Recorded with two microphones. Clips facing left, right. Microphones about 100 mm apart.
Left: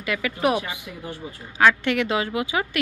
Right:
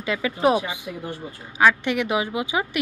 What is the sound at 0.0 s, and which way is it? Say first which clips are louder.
A woman's voice: right 2 dB; 25° right (ahead or behind).